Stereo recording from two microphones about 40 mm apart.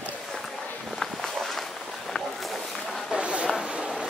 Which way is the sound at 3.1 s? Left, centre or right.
Right.